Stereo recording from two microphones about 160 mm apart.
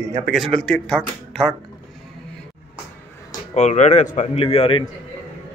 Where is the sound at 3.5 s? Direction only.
45° left (ahead or behind).